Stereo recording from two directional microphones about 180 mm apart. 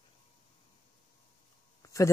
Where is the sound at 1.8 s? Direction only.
15° left (ahead or behind).